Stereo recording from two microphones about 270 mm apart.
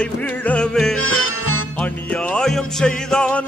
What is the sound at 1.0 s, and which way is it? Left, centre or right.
Music, left.